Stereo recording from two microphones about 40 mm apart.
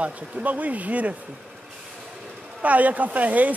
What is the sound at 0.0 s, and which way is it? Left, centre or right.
Speech, right.